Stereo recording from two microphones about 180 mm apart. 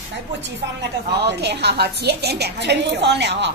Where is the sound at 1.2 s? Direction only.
65° right (ahead or behind).